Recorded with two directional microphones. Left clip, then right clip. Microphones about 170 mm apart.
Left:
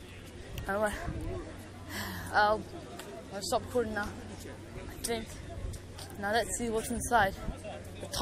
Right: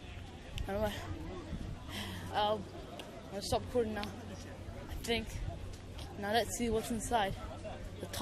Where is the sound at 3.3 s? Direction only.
10° right (ahead or behind).